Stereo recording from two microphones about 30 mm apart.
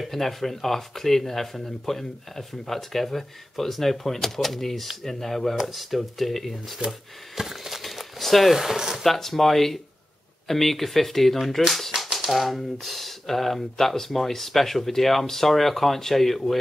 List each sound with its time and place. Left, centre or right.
0.0 s speech: centre
6.9 s speech: centre
7.8 s a sound: centre
8.5 s speech: centre
9.0 s speech: centre